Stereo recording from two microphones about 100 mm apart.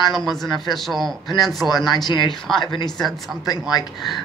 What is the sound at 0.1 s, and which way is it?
Speech, 5° left (ahead or behind).